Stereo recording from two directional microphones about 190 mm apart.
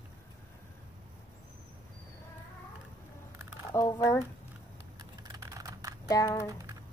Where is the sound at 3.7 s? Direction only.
15° left (ahead or behind).